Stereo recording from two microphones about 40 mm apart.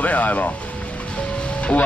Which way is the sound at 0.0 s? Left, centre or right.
Left.